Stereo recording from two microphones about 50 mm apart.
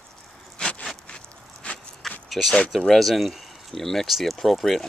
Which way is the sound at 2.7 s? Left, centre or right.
Centre.